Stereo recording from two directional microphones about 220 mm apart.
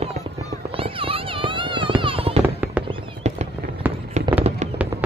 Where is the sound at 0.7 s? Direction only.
25° right (ahead or behind).